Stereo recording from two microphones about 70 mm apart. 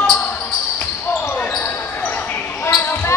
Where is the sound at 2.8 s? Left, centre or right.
Left.